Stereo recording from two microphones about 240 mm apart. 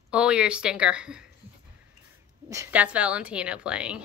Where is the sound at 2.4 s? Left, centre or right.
Centre.